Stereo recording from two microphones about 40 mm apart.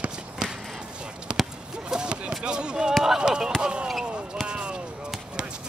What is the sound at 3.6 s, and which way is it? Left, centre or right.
Basketball bounce, right.